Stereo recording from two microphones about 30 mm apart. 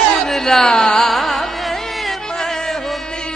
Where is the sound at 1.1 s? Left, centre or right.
Centre.